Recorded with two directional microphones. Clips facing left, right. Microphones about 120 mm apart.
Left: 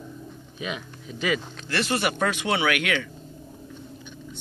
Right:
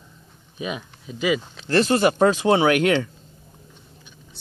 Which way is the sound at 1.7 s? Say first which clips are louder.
Right 8 dB; 35° right (ahead or behind).